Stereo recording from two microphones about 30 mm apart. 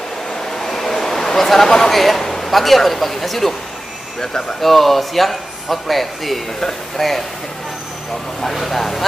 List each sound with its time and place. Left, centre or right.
0.3 s vehicle: centre
0.7 s a sound: centre
1.9 s speech: centre
4.6 s speech: centre
8.5 s speech: centre